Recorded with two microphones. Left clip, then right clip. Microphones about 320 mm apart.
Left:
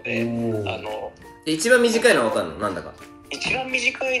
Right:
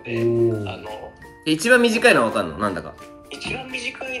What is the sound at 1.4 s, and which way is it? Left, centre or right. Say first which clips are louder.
Speech: right 1 dB; centre.